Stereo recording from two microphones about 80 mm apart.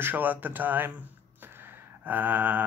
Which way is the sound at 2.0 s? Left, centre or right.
Right.